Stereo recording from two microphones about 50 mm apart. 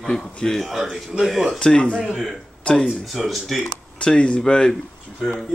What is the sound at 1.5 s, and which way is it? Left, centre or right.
Speech, centre.